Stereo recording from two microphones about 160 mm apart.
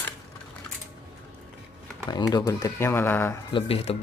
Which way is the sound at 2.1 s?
25° left (ahead or behind).